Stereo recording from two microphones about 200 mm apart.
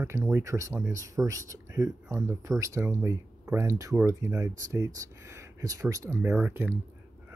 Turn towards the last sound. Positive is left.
turn(degrees=-10)  # may be behind; listen again after turning